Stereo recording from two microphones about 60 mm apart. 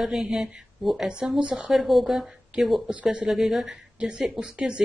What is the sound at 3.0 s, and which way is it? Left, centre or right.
Speech, centre.